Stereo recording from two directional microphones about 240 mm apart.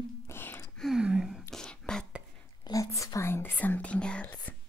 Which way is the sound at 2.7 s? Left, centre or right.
Centre.